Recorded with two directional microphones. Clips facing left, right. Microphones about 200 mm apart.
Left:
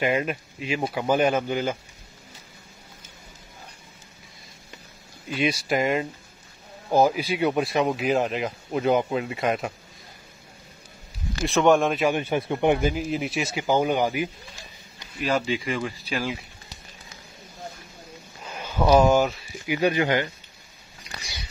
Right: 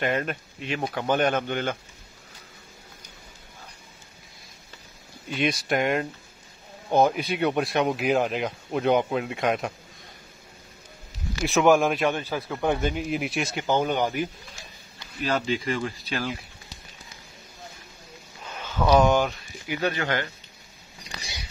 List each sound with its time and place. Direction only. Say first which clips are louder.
0.0 s speech: left 2 dB; 5° left (ahead or behind)
5.3 s speech: left 1 dB; 5° left (ahead or behind)
11.4 s speech: even; centre (ahead or behind)
12.1 s speech: left 4 dB; 20° left (ahead or behind)
12.7 s speech: left 2 dB; 5° left (ahead or behind)
18.4 s a sound: left 2 dB; 10° left (ahead or behind)
18.9 s speech: left 2 dB; 5° left (ahead or behind)